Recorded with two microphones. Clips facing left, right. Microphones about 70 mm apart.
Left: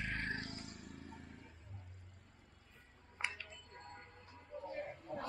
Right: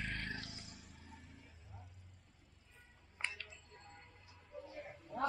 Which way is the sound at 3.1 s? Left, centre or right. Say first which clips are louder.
Left 1 dB; centre.